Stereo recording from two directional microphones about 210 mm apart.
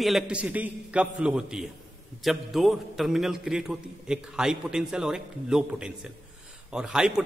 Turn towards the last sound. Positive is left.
turn(degrees=-5)  # may be behind; listen again after turning